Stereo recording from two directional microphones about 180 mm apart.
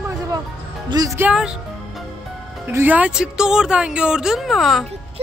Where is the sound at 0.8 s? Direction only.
20° right (ahead or behind).